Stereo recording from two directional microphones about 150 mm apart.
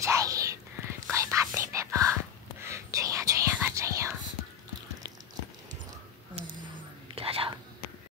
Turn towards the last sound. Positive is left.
turn(degrees=-40)  # may be behind; listen again after turning